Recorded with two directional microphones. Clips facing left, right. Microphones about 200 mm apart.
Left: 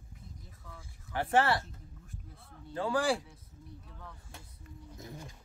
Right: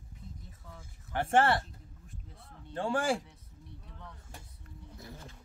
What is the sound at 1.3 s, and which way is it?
Speech, 50° right (ahead or behind).